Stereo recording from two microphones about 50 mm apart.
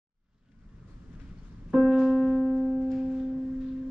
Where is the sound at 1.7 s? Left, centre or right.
Centre.